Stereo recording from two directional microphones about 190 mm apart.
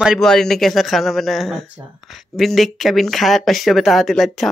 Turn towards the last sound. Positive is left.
turn(degrees=0)  # may be behind; listen again after turning